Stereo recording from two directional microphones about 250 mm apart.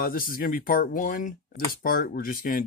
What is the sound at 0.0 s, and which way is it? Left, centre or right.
Speech, left.